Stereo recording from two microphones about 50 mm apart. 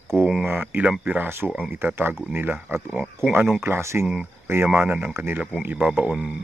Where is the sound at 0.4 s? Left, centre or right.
Right.